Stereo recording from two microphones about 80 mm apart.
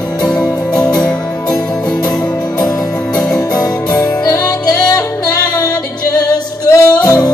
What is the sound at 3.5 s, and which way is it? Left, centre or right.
Music, left.